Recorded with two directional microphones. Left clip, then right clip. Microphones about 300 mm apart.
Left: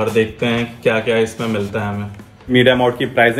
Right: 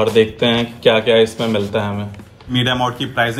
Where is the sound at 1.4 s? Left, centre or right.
Centre.